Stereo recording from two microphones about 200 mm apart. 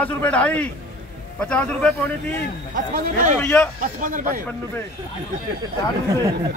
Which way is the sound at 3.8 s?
40° right (ahead or behind).